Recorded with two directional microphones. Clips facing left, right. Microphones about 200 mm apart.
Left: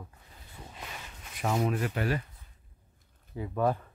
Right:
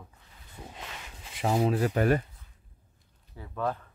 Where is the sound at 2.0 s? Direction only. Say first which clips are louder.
Right 6 dB; 45° right (ahead or behind).